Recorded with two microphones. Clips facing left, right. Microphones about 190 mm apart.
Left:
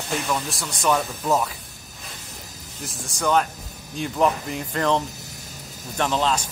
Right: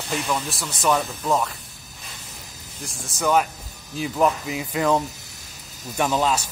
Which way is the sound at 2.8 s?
Centre (ahead or behind).